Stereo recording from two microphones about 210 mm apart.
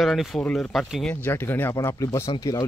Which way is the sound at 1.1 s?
10° left (ahead or behind).